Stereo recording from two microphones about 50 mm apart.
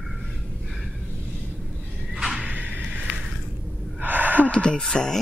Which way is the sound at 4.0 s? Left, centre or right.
Right.